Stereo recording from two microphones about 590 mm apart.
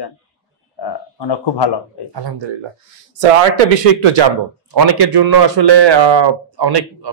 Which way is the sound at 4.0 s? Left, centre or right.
Right.